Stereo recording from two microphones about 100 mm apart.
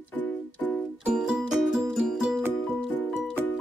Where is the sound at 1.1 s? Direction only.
5° right (ahead or behind).